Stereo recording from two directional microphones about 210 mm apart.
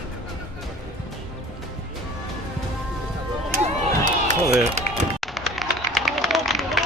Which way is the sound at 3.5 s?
35° right (ahead or behind).